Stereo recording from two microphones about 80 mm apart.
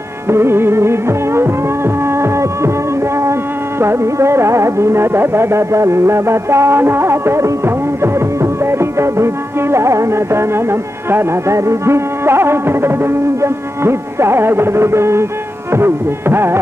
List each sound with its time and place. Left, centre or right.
0.3 s music: right
3.8 s music: right